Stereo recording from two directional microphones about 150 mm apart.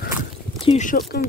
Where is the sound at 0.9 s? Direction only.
90° left.